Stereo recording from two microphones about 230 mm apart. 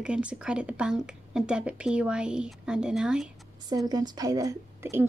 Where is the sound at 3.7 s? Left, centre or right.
Centre.